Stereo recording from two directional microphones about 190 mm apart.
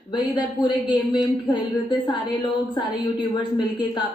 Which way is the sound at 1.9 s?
25° left (ahead or behind).